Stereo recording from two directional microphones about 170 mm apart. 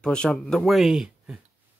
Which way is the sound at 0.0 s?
5° left (ahead or behind).